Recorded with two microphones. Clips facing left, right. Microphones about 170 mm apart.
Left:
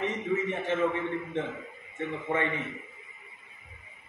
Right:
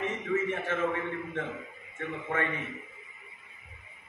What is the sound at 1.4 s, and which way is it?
Speech, 20° left (ahead or behind).